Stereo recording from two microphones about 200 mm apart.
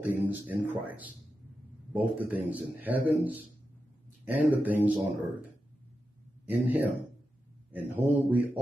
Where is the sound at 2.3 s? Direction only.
10° right (ahead or behind).